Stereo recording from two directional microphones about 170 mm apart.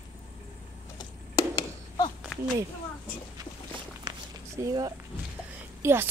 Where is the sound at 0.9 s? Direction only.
20° left (ahead or behind).